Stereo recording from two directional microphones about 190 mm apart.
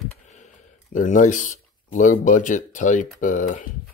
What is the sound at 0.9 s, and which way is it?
Speech, 40° left (ahead or behind).